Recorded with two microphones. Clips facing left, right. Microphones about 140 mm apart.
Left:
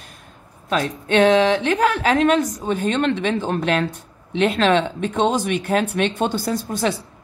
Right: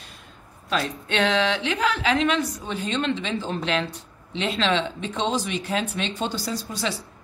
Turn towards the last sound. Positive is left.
turn(degrees=50)  # may be behind; listen again after turning